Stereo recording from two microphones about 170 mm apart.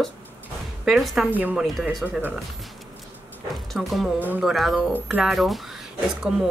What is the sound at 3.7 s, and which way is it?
A woman's voice, centre (ahead or behind).